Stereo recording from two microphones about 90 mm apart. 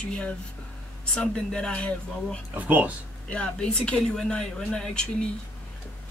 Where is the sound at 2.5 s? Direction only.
15° right (ahead or behind).